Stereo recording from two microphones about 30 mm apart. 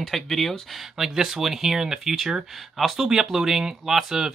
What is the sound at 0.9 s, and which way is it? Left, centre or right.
Speech, centre.